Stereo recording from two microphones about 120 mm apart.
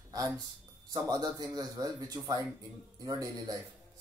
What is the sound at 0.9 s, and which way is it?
Speech, 35° right (ahead or behind).